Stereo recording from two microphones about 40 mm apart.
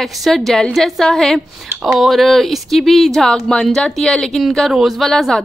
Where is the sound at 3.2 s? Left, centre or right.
Centre.